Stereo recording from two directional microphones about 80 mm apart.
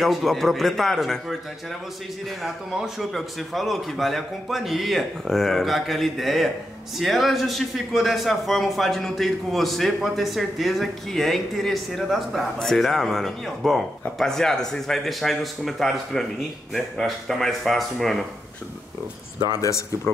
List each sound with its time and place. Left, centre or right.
0.0 s a man's voice: centre
2.4 s a man's voice: centre
19.4 s speech: left